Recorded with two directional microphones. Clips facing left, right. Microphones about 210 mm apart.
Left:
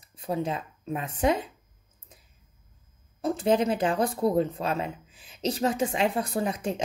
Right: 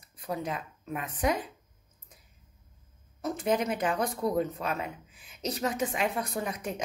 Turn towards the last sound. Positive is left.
turn(degrees=30)  # may be behind; listen again after turning